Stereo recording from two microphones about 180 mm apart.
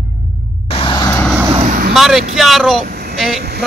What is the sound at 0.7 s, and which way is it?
Music, 30° left (ahead or behind).